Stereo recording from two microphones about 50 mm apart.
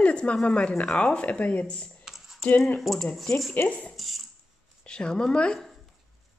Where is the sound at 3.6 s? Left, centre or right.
Left.